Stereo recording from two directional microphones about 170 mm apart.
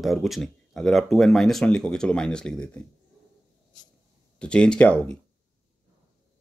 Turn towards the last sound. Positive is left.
turn(degrees=5)  # may be behind; listen again after turning